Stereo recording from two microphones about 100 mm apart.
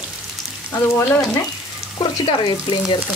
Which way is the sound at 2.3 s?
55° left (ahead or behind).